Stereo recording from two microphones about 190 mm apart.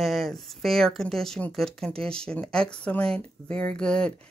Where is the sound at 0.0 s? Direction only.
Centre (ahead or behind).